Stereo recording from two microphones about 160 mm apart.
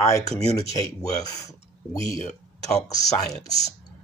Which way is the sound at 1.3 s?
20° left (ahead or behind).